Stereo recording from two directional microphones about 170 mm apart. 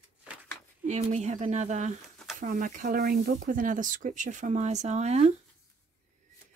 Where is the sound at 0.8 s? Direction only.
40° right (ahead or behind).